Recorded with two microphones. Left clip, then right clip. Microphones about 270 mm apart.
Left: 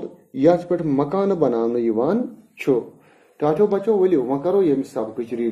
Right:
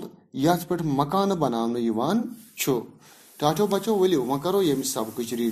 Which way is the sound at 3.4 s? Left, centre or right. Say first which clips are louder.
Left 5 dB; right.